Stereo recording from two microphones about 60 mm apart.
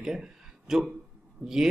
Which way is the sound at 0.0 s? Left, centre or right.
Centre.